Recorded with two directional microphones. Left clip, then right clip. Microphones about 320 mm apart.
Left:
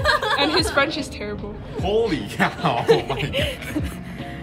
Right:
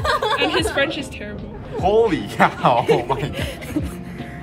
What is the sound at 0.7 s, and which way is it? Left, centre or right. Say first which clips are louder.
Speech: even; centre.